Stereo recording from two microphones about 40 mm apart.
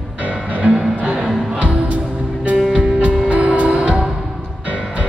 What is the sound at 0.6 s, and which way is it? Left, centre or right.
Music, right.